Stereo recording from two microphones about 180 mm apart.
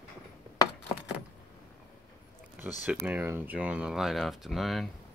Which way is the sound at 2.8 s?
10° right (ahead or behind).